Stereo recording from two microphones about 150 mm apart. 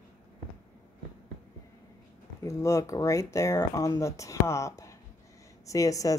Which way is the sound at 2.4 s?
20° left (ahead or behind).